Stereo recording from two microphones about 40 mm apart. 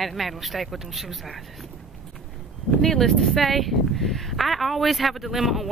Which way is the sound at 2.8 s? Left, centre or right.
Centre.